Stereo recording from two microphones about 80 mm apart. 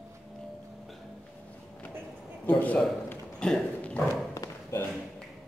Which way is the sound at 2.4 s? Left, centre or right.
Centre.